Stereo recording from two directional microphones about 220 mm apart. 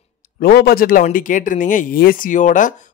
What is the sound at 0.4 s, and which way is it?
Speech, 45° left (ahead or behind).